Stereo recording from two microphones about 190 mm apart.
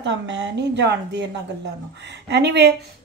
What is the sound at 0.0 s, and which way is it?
A woman's voice, 70° right (ahead or behind).